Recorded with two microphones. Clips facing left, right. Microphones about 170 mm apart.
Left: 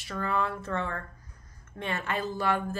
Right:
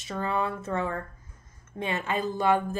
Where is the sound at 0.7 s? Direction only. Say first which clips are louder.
Right 3 dB; 10° right (ahead or behind).